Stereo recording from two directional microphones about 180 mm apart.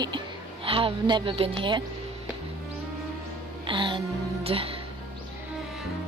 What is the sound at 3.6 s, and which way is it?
Music, 25° right (ahead or behind).